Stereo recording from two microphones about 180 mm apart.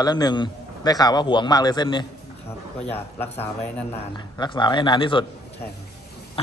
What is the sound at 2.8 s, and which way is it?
Speech, 10° left (ahead or behind).